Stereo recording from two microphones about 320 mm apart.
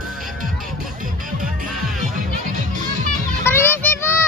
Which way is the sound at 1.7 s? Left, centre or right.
Centre.